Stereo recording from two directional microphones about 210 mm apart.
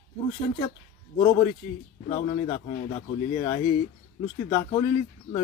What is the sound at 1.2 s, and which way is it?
Speech, 20° left (ahead or behind).